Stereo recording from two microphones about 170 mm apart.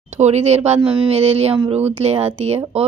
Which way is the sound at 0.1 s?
40° right (ahead or behind).